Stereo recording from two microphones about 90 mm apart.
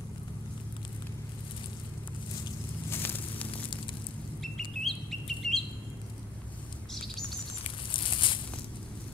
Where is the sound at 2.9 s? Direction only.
25° left (ahead or behind).